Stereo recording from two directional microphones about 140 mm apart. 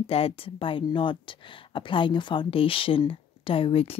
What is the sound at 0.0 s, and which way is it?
Speech, 45° left (ahead or behind).